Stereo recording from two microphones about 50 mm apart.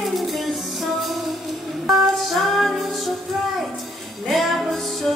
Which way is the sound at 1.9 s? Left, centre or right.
Centre.